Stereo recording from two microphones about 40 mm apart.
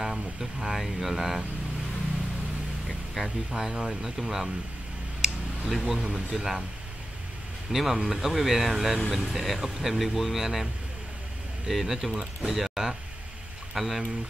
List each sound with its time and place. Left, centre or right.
0.0 s speech: centre
3.2 s speech: centre
5.8 s speech: centre
7.7 s speech: centre